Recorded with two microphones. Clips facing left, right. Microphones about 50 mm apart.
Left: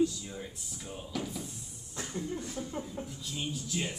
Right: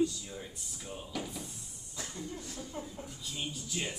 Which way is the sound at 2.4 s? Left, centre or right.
Left.